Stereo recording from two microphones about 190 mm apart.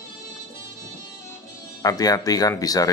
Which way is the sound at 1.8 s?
20° left (ahead or behind).